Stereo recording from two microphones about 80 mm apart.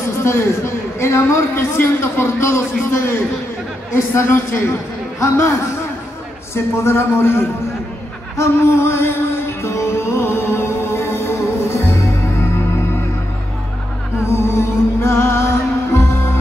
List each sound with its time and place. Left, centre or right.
0.2 s a man's voice: left
8.4 s music: left
14.2 s music: left